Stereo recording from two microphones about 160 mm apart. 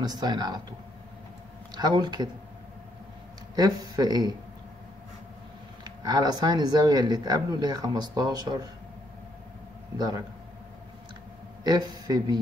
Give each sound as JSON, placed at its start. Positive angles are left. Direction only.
{"t": 0.0, "sound": "speech", "side_deg": -25}
{"t": 3.5, "sound": "speech", "side_deg": -25}
{"t": 5.9, "sound": "speech", "side_deg": -25}
{"t": 9.9, "sound": "speech", "side_deg": -25}
{"t": 11.6, "sound": "a man's voice", "side_deg": -25}